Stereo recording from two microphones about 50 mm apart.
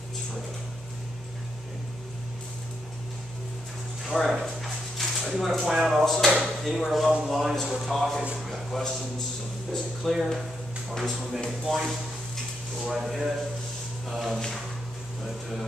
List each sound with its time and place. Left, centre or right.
4.1 s speech: centre
4.9 s a sound: centre
5.8 s speech: centre